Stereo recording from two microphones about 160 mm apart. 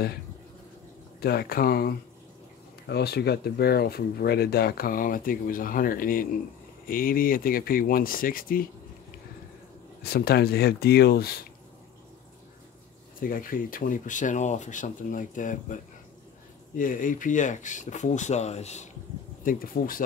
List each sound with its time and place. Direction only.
1.2 s speech: 75° left (ahead or behind)
2.9 s speech: 90° left; by 8.6 s 65° left (ahead or behind)
10.0 s speech: 80° left
13.2 s speech: 60° left (ahead or behind); by 18.9 s 45° left (ahead or behind)
19.4 s speech: 60° left (ahead or behind)